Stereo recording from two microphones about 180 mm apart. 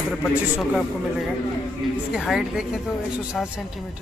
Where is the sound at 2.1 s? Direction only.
Centre (ahead or behind).